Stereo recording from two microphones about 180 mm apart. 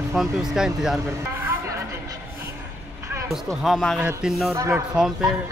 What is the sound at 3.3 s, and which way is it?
Speech, centre (ahead or behind).